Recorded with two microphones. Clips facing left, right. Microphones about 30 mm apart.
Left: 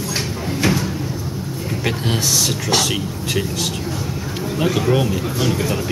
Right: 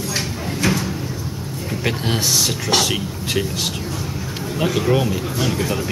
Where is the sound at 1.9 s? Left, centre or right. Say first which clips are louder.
Even; centre.